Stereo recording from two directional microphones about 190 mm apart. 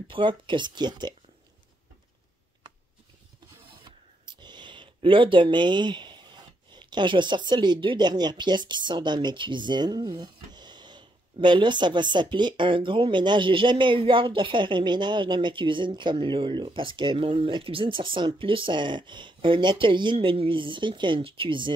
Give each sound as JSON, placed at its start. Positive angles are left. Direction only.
{"t": 0.1, "sound": "speech", "side_deg": -25}
{"t": 3.8, "sound": "speech", "side_deg": -25}